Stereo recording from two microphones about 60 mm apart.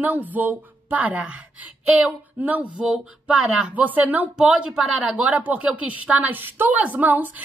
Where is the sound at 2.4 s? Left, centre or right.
Right.